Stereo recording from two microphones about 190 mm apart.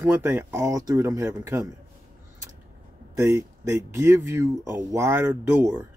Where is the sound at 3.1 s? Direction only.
15° right (ahead or behind).